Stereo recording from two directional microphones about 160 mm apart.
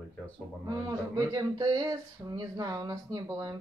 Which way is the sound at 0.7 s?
25° right (ahead or behind).